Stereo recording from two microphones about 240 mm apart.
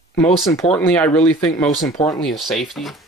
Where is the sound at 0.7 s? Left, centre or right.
Centre.